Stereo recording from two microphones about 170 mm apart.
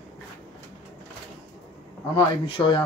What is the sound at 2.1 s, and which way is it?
Speech, 30° left (ahead or behind).